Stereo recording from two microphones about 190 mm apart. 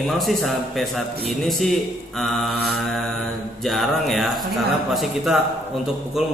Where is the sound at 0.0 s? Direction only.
Centre (ahead or behind).